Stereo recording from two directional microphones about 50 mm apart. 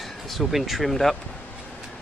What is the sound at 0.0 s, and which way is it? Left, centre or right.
Speech, centre.